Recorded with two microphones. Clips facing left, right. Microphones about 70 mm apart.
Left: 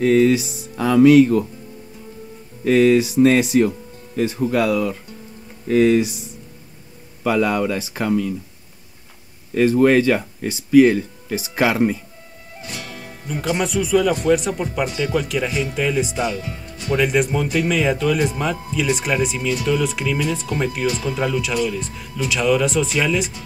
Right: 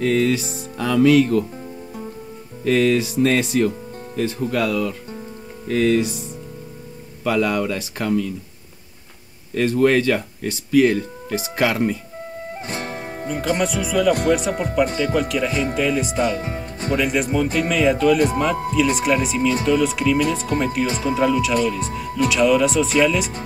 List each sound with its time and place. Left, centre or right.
0.0 s music: left
2.6 s music: left
7.2 s music: centre
9.6 s speech: centre
12.5 s music: right
13.6 s speech: centre
16.3 s speech: right
16.9 s speech: centre
20.8 s speech: right
21.2 s speech: centre